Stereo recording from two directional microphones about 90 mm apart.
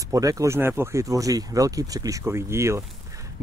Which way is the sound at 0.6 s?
25° right (ahead or behind).